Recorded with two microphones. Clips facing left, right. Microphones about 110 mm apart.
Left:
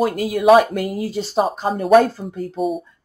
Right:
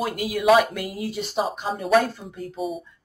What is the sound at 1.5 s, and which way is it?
Speech, 45° left (ahead or behind).